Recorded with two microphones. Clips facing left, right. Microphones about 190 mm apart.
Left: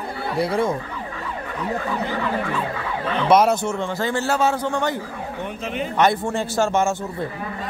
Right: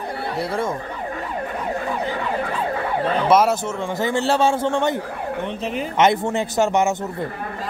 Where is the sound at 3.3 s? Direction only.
5° right (ahead or behind).